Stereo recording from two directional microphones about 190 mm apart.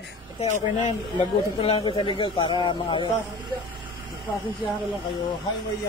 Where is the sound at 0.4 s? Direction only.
35° left (ahead or behind).